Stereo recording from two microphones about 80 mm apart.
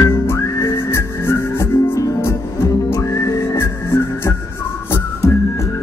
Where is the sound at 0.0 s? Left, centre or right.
Left.